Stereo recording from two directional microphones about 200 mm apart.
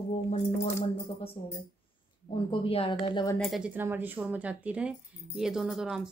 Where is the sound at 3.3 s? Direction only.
Centre (ahead or behind).